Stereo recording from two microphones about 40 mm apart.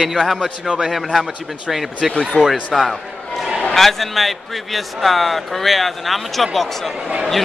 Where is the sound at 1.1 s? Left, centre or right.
Centre.